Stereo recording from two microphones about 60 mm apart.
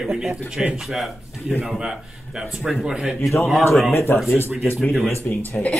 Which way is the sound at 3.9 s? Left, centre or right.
Left.